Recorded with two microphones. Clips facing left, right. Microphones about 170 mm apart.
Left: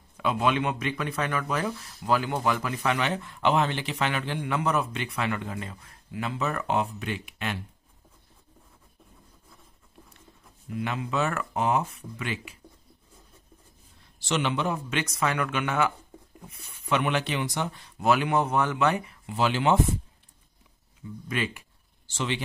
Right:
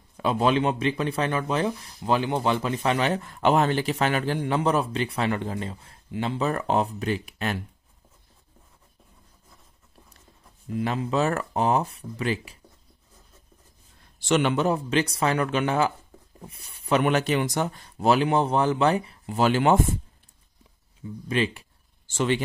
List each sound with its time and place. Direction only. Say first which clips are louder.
0.2 s speech: right 3 dB; 35° right (ahead or behind)
10.7 s speech: right 4 dB; 35° right (ahead or behind)
14.2 s a man's voice: right 5 dB; 50° right (ahead or behind)
14.7 s speech: right 6 dB; 35° right (ahead or behind)
21.3 s speech: right 5 dB; 30° right (ahead or behind)
22.0 s speech: right 6 dB; 50° right (ahead or behind)